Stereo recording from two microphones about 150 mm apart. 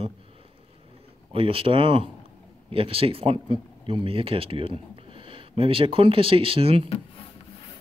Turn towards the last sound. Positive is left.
turn(degrees=-40)  # may be behind; listen again after turning